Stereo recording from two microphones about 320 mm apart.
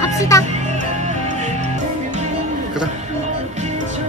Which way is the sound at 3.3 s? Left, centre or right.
Right.